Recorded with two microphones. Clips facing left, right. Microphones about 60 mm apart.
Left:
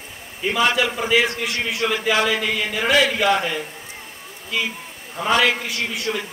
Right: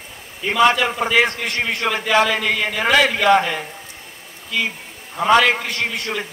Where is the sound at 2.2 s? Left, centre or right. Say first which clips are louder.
Right 2 dB; centre.